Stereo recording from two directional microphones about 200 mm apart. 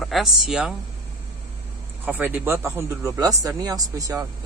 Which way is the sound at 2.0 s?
10° right (ahead or behind).